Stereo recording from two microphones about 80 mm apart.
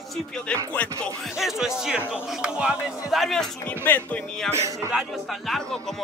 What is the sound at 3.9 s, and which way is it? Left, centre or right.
Speech, left.